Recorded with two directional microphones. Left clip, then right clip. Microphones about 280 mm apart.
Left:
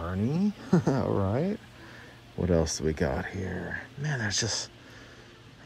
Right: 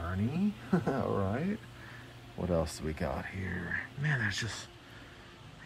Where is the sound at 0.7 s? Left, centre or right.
Right.